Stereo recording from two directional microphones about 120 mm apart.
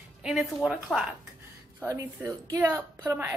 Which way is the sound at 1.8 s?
25° right (ahead or behind).